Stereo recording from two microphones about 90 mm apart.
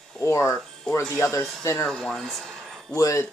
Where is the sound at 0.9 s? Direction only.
10° left (ahead or behind).